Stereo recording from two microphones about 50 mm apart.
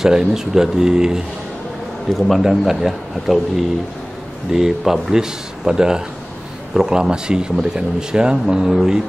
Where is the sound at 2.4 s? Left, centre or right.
Centre.